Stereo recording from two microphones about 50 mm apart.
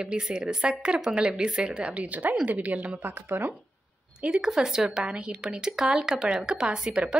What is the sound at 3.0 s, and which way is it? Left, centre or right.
Speech, right.